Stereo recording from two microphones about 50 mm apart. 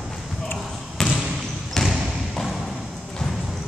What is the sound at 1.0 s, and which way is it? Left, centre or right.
Trickle, centre.